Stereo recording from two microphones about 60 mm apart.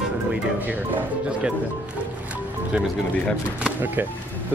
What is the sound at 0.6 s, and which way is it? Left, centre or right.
Speech, right.